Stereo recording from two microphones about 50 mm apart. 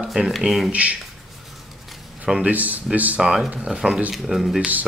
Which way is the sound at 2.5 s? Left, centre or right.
Right.